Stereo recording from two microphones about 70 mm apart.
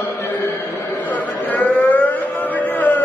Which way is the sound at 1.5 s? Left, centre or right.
Left.